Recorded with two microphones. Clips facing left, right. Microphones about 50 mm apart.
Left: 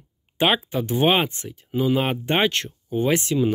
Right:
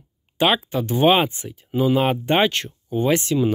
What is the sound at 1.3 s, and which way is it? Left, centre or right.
Speech, centre.